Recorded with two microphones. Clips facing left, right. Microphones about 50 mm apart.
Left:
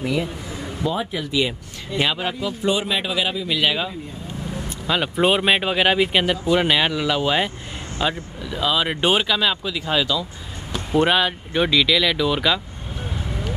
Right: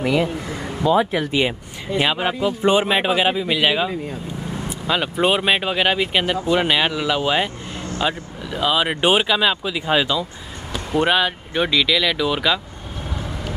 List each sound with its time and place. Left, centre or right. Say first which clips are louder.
0.0 s speech: right 4 dB; right
1.3 s speech: right 2 dB; right
2.0 s speech: right 3 dB; centre
4.8 s speech: even; centre
11.0 s speech: even; centre